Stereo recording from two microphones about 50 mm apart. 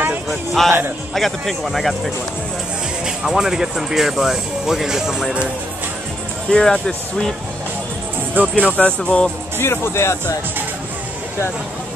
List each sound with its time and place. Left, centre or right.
0.3 s music: centre
1.1 s speech: centre
3.1 s speech: centre
6.5 s speech: centre
8.4 s speech: right
8.7 s music: left
9.6 s speech: left